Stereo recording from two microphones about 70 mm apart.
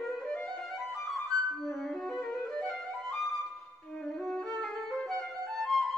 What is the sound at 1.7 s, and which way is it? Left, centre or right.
Music, centre.